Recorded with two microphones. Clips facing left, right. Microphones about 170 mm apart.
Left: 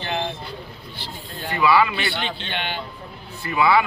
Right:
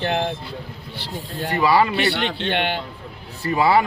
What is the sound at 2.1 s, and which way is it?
Speech, 65° right (ahead or behind).